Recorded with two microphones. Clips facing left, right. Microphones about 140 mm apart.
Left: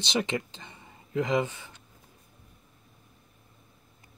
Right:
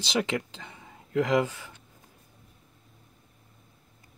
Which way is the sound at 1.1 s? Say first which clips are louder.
Right 2 dB; 80° right.